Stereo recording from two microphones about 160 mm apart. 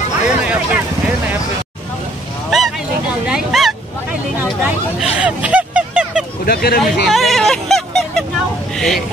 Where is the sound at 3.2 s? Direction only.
Centre (ahead or behind).